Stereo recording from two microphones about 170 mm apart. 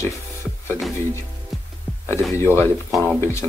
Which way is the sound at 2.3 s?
15° left (ahead or behind).